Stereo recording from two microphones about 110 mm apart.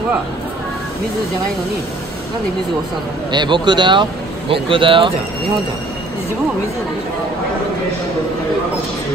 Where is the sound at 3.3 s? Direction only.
45° right (ahead or behind).